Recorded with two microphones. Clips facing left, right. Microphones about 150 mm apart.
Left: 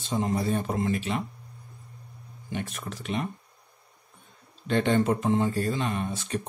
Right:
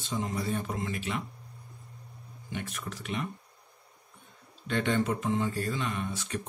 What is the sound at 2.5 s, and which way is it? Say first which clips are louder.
Speech: left 4 dB; 30° left (ahead or behind).